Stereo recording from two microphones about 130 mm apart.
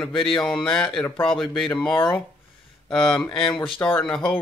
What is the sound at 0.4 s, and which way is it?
Speech, 5° left (ahead or behind).